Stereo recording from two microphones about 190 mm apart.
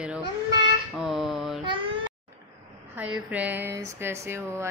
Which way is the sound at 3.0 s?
10° right (ahead or behind).